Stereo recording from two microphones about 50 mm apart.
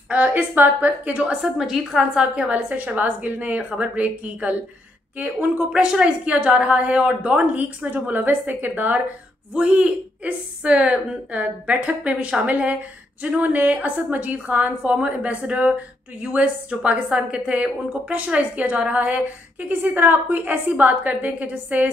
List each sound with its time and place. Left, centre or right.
0.1 s a woman's voice: right
1.4 s a woman's voice: centre
2.1 s a woman's voice: right
5.7 s a woman's voice: centre
7.8 s a woman's voice: right
9.5 s a woman's voice: right